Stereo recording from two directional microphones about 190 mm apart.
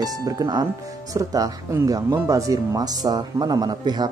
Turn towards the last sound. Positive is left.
turn(degrees=-20)  # may be behind; listen again after turning